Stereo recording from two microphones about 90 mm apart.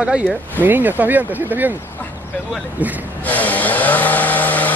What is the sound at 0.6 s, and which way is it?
Speech, 20° right (ahead or behind).